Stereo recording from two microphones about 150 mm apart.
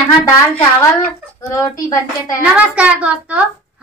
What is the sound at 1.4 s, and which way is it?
Speech, 20° left (ahead or behind).